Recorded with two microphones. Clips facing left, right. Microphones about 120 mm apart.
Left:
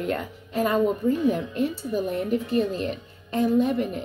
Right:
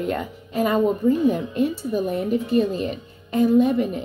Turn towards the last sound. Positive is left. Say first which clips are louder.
# right 4 dB
turn(degrees=-20)  # may be behind; listen again after turning